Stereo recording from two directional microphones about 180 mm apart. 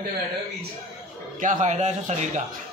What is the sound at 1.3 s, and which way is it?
Speech, 45° right (ahead or behind).